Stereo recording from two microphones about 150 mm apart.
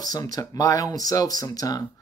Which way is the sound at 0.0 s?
25° left (ahead or behind).